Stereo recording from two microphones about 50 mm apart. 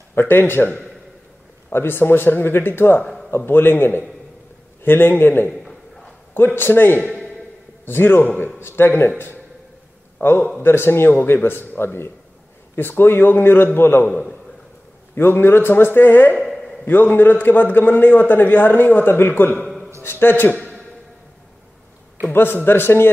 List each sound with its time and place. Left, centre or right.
0.1 s a man's voice: left
10.6 s speech: left
15.1 s speech: left
16.3 s a sound: centre
16.8 s a man's voice: left
22.2 s speech: left